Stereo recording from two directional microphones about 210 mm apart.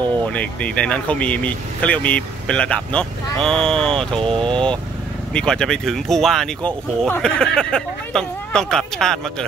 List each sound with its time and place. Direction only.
0.3 s speech: 5° left (ahead or behind)
4.2 s speech: 25° right (ahead or behind)
5.3 s speech: 5° left (ahead or behind)